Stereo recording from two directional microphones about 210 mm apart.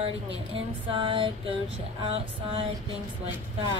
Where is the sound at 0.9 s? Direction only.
25° right (ahead or behind).